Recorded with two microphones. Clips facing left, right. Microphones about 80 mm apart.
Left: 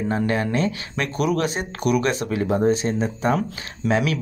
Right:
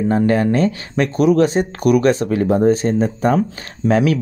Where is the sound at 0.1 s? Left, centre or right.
Right.